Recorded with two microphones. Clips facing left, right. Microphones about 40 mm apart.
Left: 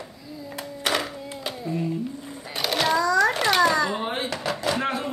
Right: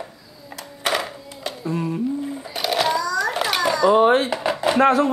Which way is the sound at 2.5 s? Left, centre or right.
Centre.